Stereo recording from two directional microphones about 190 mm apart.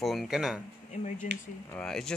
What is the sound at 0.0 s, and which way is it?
Speech, centre (ahead or behind).